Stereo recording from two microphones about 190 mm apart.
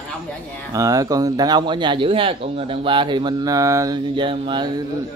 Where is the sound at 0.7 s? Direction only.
20° right (ahead or behind).